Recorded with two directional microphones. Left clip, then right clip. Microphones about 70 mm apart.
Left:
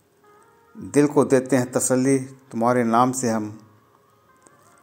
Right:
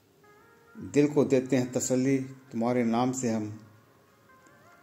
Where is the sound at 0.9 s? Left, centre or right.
Left.